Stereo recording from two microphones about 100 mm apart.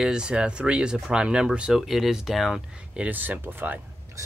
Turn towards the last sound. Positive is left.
turn(degrees=-35)  # may be behind; listen again after turning